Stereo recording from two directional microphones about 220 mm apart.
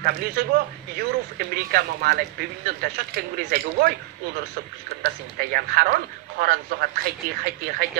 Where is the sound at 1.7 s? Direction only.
45° right (ahead or behind).